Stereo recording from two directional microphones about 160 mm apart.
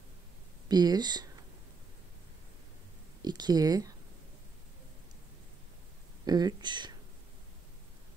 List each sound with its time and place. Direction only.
0.7 s speech: 25° right (ahead or behind)
3.2 s speech: 25° right (ahead or behind)
6.2 s speech: 25° right (ahead or behind)